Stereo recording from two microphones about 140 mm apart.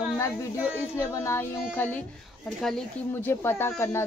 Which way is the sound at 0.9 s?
20° left (ahead or behind).